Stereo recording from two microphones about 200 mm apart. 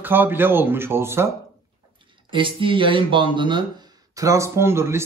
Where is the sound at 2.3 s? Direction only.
25° right (ahead or behind).